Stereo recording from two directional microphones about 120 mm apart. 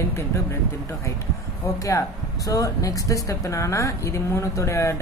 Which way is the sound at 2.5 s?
30° left (ahead or behind).